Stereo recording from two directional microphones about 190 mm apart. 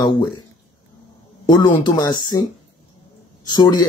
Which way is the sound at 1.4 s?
25° left (ahead or behind).